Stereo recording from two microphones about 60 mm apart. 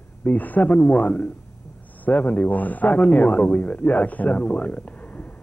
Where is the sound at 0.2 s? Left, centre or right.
Left.